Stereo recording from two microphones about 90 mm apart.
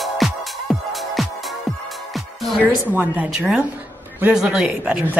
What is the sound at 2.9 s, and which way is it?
A woman's voice, 20° right (ahead or behind).